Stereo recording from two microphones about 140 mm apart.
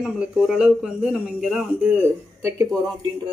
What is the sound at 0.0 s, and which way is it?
Speech, 5° right (ahead or behind).